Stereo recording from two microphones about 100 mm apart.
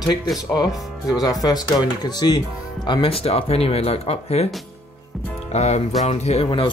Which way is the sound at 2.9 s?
70° left (ahead or behind).